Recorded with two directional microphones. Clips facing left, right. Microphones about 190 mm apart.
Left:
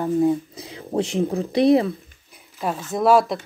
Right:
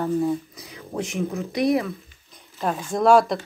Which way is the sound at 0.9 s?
30° left (ahead or behind).